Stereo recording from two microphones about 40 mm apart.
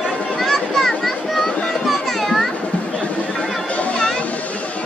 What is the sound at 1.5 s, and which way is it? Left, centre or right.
Music, left.